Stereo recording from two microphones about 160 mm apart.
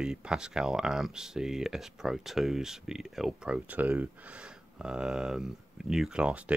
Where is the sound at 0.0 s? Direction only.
5° right (ahead or behind).